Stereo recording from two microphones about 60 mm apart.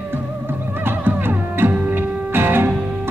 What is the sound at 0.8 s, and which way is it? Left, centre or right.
Music, right.